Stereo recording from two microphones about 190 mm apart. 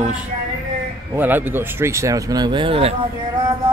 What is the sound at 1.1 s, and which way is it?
Speech, 10° right (ahead or behind).